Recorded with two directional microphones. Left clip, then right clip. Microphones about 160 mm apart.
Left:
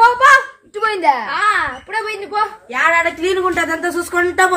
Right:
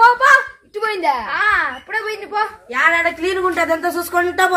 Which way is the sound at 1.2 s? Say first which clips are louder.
Left 1 dB; 65° left (ahead or behind).